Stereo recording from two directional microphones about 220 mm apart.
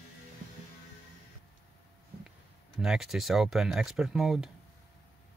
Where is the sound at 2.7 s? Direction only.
Centre (ahead or behind).